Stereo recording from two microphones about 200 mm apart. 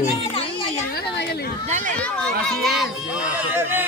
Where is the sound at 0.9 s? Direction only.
50° left (ahead or behind).